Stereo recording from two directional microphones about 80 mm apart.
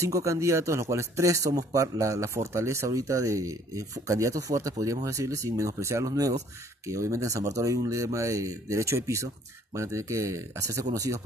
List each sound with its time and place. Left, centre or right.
0.0 s speech: right